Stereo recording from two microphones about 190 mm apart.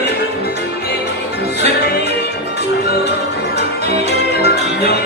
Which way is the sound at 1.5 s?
60° left (ahead or behind).